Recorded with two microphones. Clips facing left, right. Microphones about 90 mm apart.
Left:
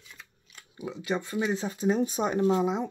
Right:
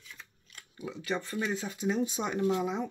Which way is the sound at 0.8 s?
20° left (ahead or behind).